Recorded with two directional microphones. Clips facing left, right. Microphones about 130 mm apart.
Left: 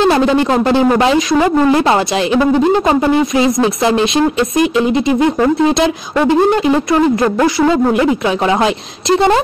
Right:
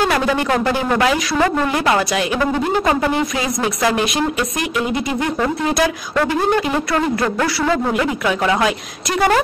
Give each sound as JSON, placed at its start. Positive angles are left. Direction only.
{"t": 0.0, "sound": "speech", "side_deg": 25}